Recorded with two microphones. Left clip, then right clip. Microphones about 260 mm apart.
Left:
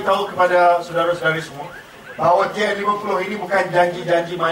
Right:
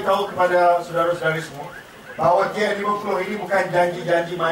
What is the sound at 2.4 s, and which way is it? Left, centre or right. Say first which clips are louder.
A man's voice: left 2 dB; centre.